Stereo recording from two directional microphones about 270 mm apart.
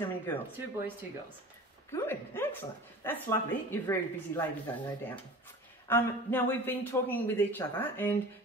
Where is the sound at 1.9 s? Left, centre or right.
Centre.